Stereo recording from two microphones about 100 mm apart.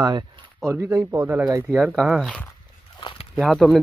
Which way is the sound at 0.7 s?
30° right (ahead or behind).